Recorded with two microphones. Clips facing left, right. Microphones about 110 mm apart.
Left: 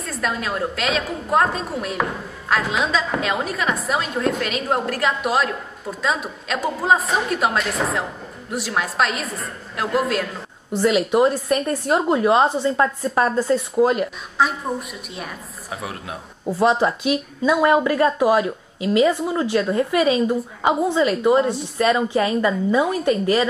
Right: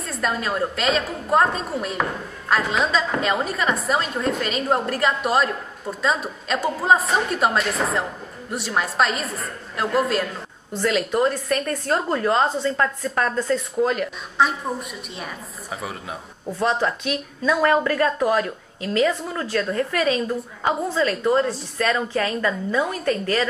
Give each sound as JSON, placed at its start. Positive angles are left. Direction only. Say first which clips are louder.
{"t": 0.0, "sound": "a woman's voice", "louder": "even", "side_deg": 0}
{"t": 10.8, "sound": "a woman's voice", "louder": "left 4 dB", "side_deg": 10}
{"t": 13.2, "sound": "a woman's voice", "louder": "left 3 dB", "side_deg": 10}